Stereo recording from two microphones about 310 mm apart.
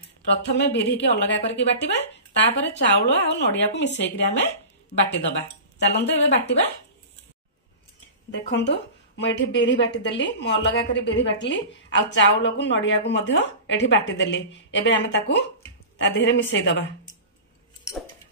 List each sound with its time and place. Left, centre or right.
0.5 s speech: left
5.8 s speech: left
8.5 s speech: left